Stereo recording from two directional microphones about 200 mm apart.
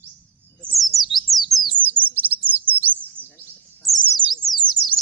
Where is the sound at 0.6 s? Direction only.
Centre (ahead or behind).